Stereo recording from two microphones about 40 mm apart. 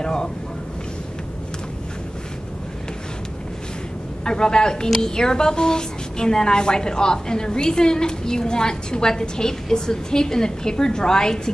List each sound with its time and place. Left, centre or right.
0.0 s speech: centre
4.2 s a woman's voice: centre